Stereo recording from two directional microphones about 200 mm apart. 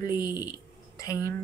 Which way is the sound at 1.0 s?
15° left (ahead or behind).